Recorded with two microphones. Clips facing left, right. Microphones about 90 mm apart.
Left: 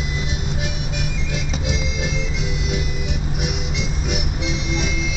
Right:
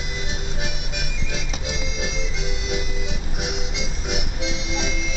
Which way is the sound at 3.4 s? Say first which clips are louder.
Even; 25° right (ahead or behind).